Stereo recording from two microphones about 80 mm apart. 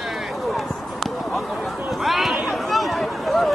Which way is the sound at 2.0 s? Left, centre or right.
Centre.